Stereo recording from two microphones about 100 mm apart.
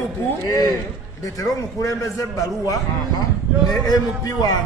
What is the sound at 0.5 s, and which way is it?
A man's voice, 40° left (ahead or behind).